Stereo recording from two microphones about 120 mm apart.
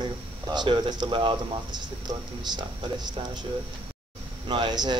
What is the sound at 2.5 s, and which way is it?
Speech, 40° right (ahead or behind).